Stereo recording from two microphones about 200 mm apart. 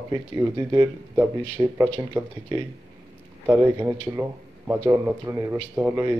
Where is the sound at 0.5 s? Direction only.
10° right (ahead or behind).